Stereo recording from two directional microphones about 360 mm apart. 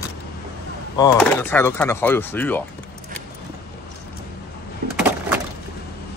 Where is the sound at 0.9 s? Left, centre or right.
Centre.